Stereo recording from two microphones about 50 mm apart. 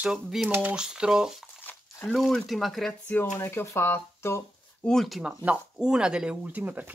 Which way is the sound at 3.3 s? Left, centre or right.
Left.